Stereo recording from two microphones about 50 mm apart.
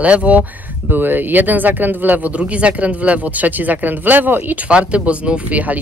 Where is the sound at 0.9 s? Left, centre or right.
Right.